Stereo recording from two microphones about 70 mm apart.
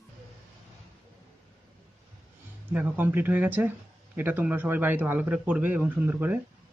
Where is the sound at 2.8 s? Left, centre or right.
Right.